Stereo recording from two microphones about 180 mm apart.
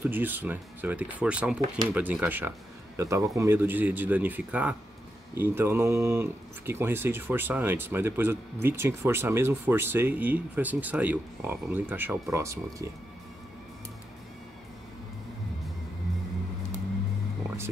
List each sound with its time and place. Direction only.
0.0 s speech: 10° right (ahead or behind)